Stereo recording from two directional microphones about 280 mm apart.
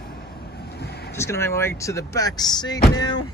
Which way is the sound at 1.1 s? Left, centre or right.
Centre.